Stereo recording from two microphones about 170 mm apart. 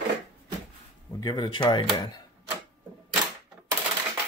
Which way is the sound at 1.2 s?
25° left (ahead or behind).